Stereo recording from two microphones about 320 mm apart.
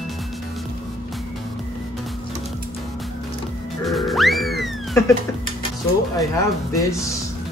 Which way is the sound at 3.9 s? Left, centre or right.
Centre.